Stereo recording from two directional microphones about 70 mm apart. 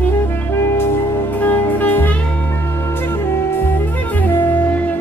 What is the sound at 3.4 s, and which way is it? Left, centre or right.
Music, left.